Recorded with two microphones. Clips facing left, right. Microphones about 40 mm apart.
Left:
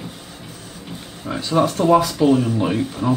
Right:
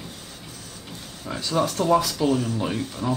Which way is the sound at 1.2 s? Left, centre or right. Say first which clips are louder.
Left 6 dB; centre.